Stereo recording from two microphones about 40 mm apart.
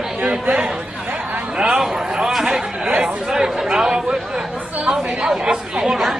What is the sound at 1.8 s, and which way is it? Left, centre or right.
Speech, centre.